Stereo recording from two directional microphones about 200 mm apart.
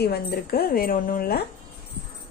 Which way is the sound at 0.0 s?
50° left (ahead or behind).